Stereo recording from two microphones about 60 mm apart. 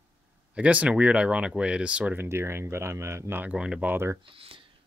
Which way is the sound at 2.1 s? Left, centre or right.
Right.